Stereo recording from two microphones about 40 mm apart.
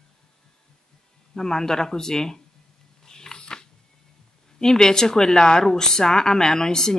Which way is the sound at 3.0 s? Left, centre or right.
Centre.